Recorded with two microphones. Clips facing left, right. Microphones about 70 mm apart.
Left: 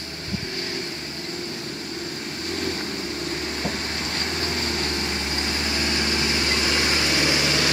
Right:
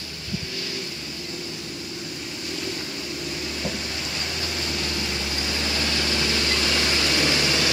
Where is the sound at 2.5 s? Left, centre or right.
Left; by 7.6 s centre.